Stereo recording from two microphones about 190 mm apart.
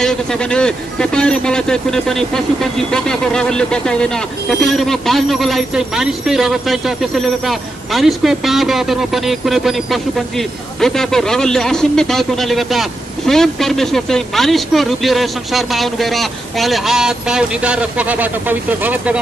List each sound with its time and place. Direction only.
0.0 s a man's voice: 5° left (ahead or behind)
10.8 s a man's voice: centre (ahead or behind)